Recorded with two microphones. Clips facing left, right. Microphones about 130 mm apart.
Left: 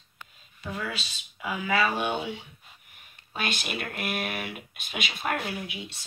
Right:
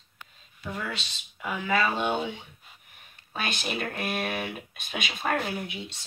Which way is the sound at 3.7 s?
30° right (ahead or behind).